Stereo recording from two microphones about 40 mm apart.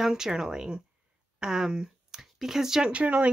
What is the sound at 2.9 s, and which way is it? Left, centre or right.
Speech, right.